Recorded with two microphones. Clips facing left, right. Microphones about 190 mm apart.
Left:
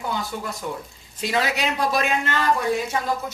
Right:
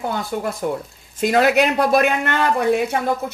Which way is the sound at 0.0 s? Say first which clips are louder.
Right 5 dB; 55° right (ahead or behind).